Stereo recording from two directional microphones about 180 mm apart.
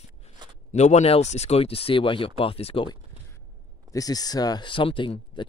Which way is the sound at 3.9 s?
20° left (ahead or behind).